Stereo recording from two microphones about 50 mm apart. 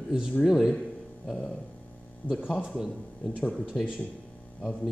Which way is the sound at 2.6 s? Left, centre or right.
Centre.